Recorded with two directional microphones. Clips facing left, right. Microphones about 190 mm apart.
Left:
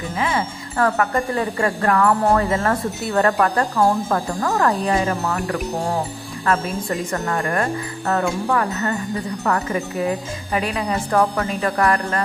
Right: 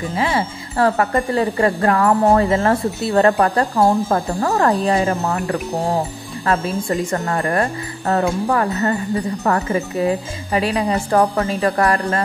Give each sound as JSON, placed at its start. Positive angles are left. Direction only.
{"t": 0.1, "sound": "speech", "side_deg": -30}
{"t": 7.1, "sound": "speech", "side_deg": -30}